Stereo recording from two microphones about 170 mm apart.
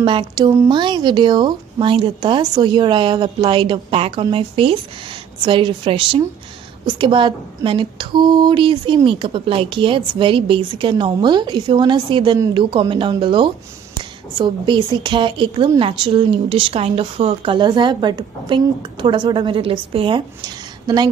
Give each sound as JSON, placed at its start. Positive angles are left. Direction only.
{"t": 0.0, "sound": "a woman's voice", "side_deg": -30}